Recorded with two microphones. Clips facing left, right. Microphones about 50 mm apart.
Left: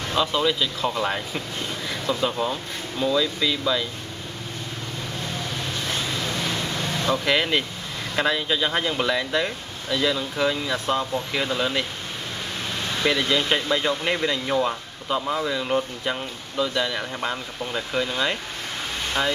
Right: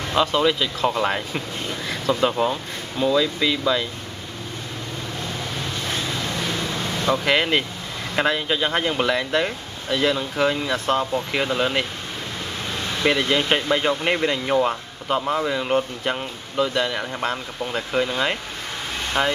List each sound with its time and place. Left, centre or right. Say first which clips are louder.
0.3 s speech: right 3 dB; centre
7.2 s speech: right 2 dB; centre
13.0 s speech: right 2 dB; right